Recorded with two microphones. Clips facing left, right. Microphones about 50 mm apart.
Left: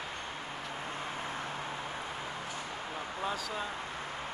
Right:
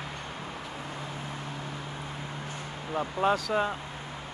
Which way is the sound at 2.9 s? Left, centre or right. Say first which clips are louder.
Right 11 dB; right.